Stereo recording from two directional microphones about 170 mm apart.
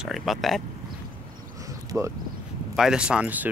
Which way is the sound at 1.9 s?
15° right (ahead or behind).